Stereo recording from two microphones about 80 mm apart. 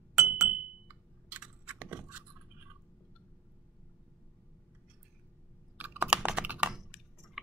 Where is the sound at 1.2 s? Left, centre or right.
Centre.